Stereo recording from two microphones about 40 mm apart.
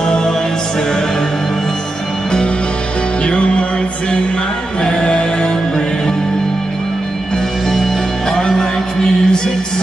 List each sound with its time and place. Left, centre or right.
3.3 s music: left
4.8 s music: left
8.4 s music: centre